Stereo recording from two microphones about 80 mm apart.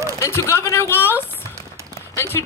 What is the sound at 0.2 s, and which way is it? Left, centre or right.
Speech, left.